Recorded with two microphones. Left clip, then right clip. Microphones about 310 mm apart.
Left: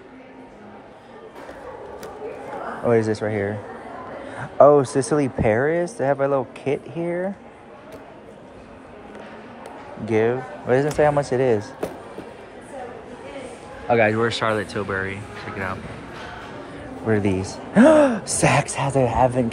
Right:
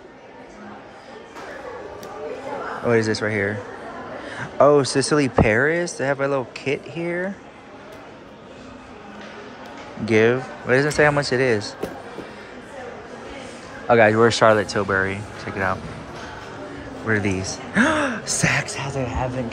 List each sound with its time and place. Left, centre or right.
2.8 s speech: centre
10.0 s speech: centre
13.8 s speech: centre
17.1 s speech: centre